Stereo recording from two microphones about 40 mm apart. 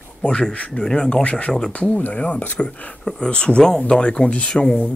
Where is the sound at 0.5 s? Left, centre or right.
Left.